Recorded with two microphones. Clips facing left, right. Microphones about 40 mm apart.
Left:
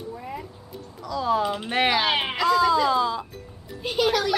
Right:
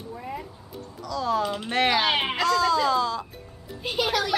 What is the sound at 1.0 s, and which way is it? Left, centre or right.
Speech, centre.